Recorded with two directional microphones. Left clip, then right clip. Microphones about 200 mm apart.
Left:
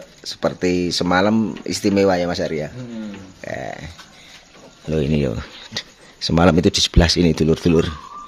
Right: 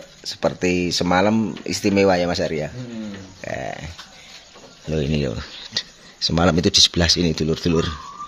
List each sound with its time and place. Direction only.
0.2 s speech: 10° left (ahead or behind)
3.3 s burping: centre (ahead or behind)
4.8 s speech: 15° left (ahead or behind)